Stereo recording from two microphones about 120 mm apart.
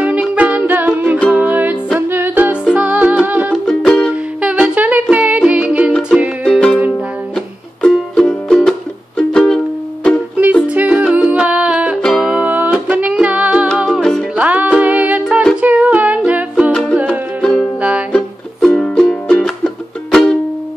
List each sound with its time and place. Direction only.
0.0 s music: 10° right (ahead or behind)
3.5 s music: 5° left (ahead or behind)
4.1 s music: 10° right (ahead or behind)
6.4 s music: 5° left (ahead or behind)
10.3 s music: 10° right (ahead or behind)
15.6 s a sound: 10° right (ahead or behind)
16.3 s music: 10° right (ahead or behind)
17.7 s music: 10° right (ahead or behind)
18.1 s music: 5° left (ahead or behind)